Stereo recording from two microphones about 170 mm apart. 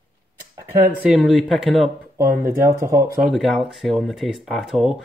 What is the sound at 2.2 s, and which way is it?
Speech, 60° right (ahead or behind).